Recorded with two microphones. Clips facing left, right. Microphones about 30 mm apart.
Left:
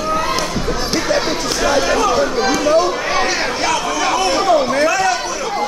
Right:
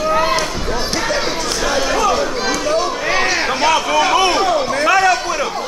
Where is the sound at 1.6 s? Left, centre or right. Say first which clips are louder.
Left 1 dB; centre.